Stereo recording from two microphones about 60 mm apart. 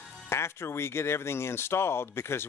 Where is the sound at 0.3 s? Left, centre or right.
Left.